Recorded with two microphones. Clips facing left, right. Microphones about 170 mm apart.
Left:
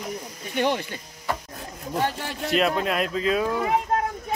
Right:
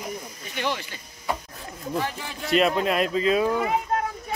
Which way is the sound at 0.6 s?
50° left (ahead or behind).